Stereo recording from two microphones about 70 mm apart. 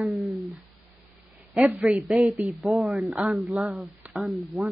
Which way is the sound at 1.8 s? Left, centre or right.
Centre.